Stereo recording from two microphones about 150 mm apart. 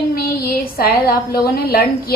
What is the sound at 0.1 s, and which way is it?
A woman's voice, 85° left.